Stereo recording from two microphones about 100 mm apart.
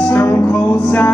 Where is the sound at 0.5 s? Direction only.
15° left (ahead or behind).